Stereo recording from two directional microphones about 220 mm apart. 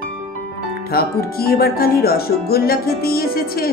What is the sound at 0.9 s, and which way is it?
Music, 45° left (ahead or behind).